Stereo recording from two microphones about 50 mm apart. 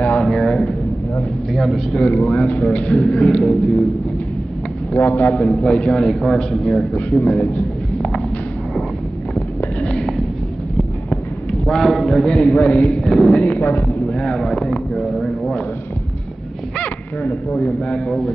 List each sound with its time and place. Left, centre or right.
0.2 s a sound: centre
1.5 s speech: centre
2.0 s a man's voice: left; by 3.8 s centre
4.9 s a man's voice: left
5.5 s a man's voice: left
6.9 s a man's voice: left
9.8 s a sound: centre
11.6 s a man's voice: centre
12.3 s a man's voice: left
13.0 s a man's voice: centre
13.4 s a man's voice: left; by 14.8 s centre
15.0 s speech: centre
17.5 s a man's voice: left